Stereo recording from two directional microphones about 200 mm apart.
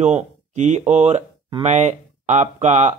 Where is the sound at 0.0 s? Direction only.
35° right (ahead or behind).